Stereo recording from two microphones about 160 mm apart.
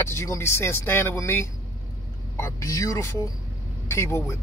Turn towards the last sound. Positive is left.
turn(degrees=15)  # may be behind; listen again after turning